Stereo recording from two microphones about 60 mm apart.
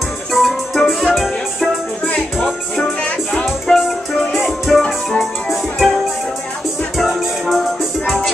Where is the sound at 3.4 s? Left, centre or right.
Centre.